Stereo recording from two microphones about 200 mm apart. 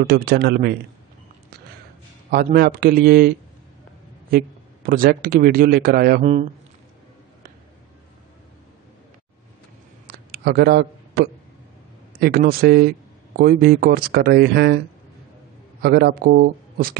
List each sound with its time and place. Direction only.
0.0 s speech: 50° right (ahead or behind)
2.3 s speech: 50° right (ahead or behind)
6.2 s a man's voice: 35° right (ahead or behind)
10.0 s a sound: 50° right (ahead or behind)
12.2 s speech: 50° right (ahead or behind)
15.8 s speech: 50° right (ahead or behind)